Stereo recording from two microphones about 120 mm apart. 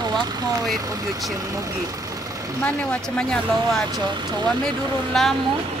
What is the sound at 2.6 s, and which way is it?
Speech, 10° left (ahead or behind).